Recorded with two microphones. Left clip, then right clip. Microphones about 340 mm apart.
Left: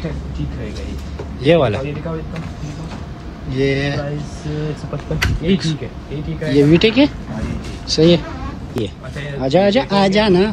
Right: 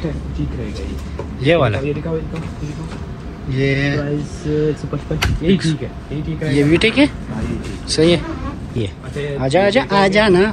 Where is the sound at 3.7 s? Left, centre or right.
Centre.